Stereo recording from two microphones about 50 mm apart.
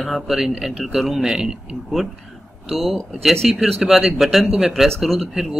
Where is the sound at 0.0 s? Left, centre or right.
Centre.